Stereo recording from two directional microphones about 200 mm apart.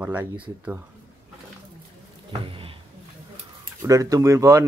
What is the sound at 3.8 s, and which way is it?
Speech, 15° right (ahead or behind).